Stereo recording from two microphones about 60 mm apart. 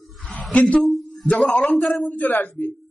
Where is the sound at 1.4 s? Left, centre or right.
Centre.